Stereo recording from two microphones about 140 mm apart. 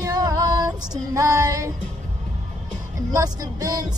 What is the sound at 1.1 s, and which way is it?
Female singing, 20° right (ahead or behind).